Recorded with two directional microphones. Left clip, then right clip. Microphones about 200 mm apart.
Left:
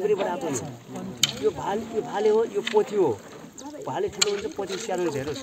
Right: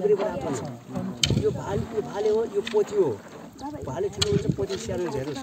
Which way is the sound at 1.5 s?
25° left (ahead or behind).